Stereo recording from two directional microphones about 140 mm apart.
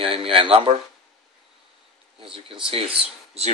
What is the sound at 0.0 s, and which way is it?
Speech, 40° right (ahead or behind).